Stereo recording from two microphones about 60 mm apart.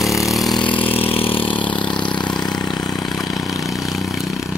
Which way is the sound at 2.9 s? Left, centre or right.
Centre.